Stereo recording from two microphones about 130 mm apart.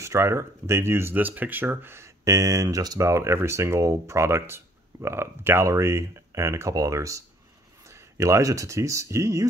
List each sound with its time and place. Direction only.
0.0 s speech: 20° right (ahead or behind)